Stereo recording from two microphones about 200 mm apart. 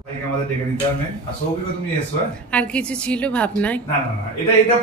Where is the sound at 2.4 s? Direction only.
5° left (ahead or behind).